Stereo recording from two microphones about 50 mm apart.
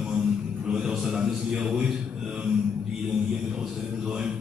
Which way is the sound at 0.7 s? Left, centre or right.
Centre.